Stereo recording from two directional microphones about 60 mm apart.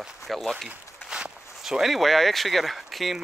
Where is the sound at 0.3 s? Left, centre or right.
Centre.